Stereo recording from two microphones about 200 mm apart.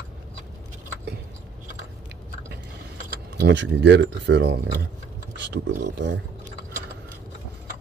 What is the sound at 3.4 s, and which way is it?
Speech, 65° right (ahead or behind).